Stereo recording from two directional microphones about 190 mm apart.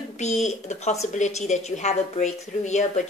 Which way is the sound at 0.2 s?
40° left (ahead or behind).